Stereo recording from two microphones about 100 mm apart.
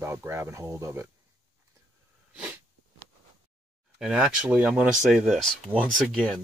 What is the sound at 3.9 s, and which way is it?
Speech, 5° right (ahead or behind).